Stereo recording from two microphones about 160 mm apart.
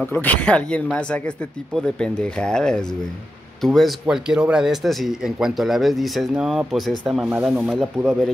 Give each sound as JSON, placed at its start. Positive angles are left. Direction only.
{"t": 0.0, "sound": "speech", "side_deg": 10}